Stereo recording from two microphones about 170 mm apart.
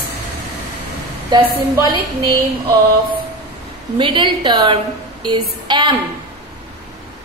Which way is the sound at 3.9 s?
30° right (ahead or behind).